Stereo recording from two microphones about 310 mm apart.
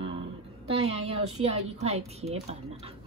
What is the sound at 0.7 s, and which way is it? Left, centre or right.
Speech, centre.